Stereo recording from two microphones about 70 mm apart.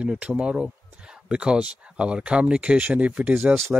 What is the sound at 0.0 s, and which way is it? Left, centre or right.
Speech, centre.